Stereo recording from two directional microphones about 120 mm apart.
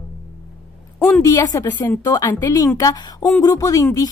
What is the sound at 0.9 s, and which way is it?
Speech, 5° left (ahead or behind).